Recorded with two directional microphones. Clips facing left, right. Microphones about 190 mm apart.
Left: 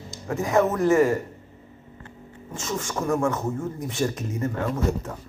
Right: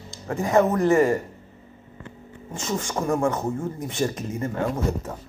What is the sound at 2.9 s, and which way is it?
Speech, 15° right (ahead or behind).